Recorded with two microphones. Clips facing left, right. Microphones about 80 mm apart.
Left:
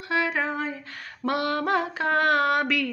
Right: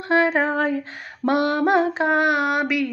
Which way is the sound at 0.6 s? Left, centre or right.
Right.